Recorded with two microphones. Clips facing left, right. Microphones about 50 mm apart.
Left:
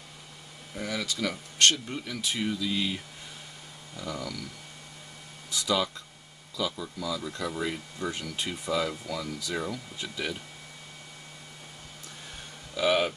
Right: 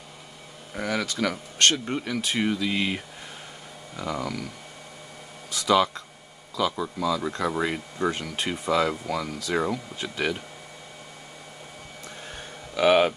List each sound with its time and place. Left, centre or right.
0.7 s speech: right
5.5 s speech: right
12.7 s speech: right